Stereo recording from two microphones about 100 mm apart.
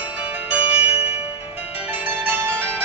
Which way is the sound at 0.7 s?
90° left.